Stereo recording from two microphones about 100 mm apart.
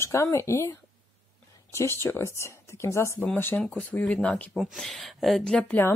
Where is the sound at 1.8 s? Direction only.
25° left (ahead or behind).